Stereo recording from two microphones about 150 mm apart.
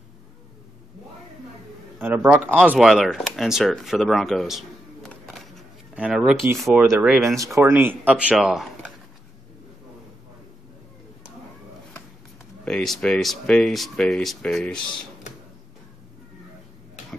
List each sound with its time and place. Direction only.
2.0 s speech: 10° right (ahead or behind)
5.3 s a sound: centre (ahead or behind)
6.6 s speech: 5° right (ahead or behind)
7.3 s speech: 20° right (ahead or behind); by 8.9 s centre (ahead or behind)
12.6 s speech: 5° left (ahead or behind)